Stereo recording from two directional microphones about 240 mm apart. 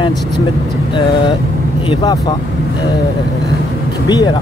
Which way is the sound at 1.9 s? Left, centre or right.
Centre.